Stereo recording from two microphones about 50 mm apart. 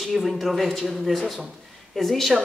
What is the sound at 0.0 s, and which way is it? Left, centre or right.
Speech, centre.